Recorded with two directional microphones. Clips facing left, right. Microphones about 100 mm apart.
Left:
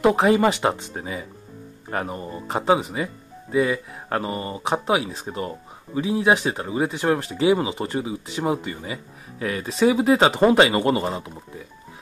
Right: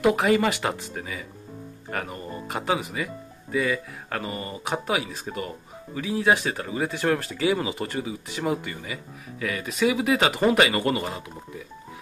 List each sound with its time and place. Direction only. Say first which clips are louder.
0.0 s speech: left 3 dB; 30° left (ahead or behind)